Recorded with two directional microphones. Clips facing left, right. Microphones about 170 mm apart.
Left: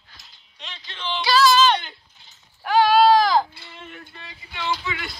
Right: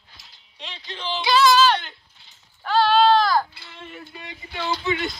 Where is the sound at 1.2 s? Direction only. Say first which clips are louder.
Even; 20° right (ahead or behind).